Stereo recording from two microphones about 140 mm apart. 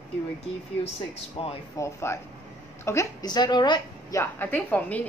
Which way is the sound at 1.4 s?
40° left (ahead or behind).